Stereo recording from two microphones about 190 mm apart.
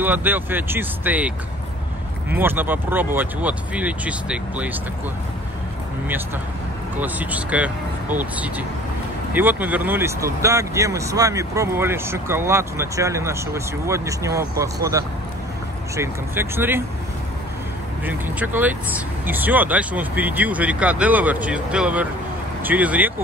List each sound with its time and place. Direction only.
0.0 s speech: 10° right (ahead or behind)
7.0 s speech: 10° right (ahead or behind)
18.0 s speech: 10° right (ahead or behind)